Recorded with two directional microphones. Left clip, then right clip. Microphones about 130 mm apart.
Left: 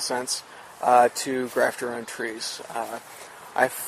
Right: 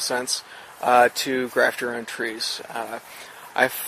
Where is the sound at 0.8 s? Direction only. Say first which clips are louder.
Right 1 dB; 20° right (ahead or behind).